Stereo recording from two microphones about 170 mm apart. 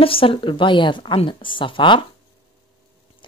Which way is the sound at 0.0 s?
35° left (ahead or behind).